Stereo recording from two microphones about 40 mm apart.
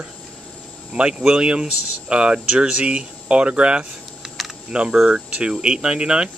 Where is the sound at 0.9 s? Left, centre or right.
Right.